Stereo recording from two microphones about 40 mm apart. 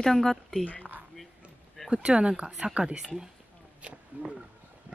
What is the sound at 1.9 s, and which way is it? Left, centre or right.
Speech, right.